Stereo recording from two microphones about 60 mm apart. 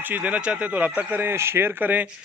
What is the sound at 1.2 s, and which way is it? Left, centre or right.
Speech, right.